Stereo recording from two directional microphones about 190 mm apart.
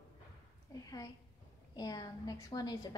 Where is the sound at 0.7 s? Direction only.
20° left (ahead or behind).